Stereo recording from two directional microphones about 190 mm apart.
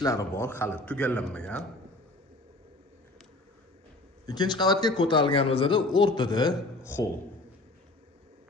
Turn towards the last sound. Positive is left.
turn(degrees=15)  # may be behind; listen again after turning